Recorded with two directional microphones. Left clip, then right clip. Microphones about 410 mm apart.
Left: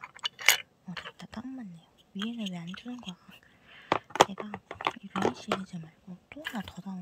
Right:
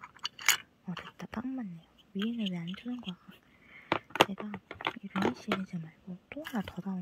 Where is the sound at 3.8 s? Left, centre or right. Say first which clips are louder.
Left 3 dB; left.